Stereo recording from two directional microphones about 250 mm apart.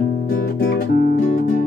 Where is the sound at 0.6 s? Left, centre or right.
Left.